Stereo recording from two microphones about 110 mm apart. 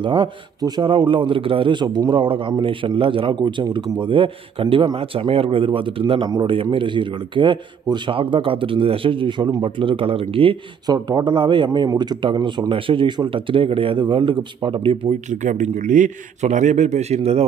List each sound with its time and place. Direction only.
0.0 s speech: 50° right (ahead or behind)
10.9 s speech: 40° right (ahead or behind)
15.4 s a man's voice: 90° right; by 17.5 s 70° right (ahead or behind)